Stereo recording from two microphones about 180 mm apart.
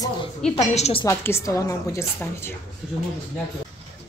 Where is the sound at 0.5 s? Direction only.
35° left (ahead or behind).